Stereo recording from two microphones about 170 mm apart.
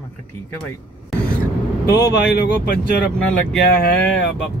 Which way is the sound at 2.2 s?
70° left (ahead or behind).